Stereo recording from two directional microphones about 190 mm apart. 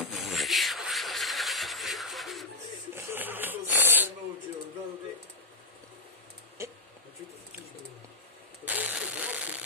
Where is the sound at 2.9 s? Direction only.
10° right (ahead or behind).